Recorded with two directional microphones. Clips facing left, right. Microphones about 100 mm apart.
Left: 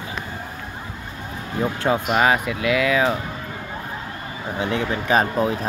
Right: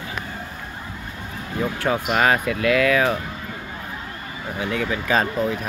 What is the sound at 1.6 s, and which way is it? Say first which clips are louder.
Speech: left 2 dB; 20° left (ahead or behind).